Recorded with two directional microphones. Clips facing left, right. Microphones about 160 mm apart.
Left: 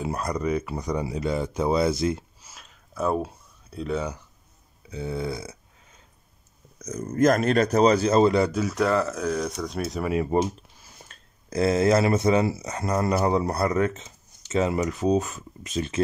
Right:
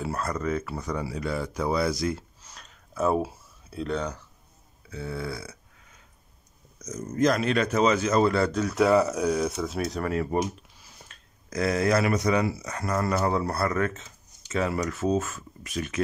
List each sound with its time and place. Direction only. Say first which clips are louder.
0.0 s speech: left 2 dB; 15° left (ahead or behind)
2.4 s a sound: even; 5° left (ahead or behind)
4.8 s burping: left 4 dB; 20° left (ahead or behind)
6.8 s speech: left 3 dB; 55° left (ahead or behind); by 8.2 s 35° left (ahead or behind)
8.2 s speech: left 3 dB; 20° left (ahead or behind)
8.5 s speech: left 1 dB; 5° left (ahead or behind)
8.7 s speech: right 5 dB; 10° right (ahead or behind)
10.1 s speech: left 5 dB; 25° left (ahead or behind)
11.1 s a sound: left 2 dB; 40° left (ahead or behind)
11.5 s speech: left 4 dB; 25° left (ahead or behind)